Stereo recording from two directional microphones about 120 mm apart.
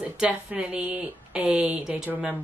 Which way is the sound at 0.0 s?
10° right (ahead or behind).